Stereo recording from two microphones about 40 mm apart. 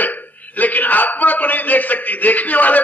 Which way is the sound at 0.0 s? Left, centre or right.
Left.